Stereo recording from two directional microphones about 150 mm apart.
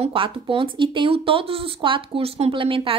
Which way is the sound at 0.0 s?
35° right (ahead or behind).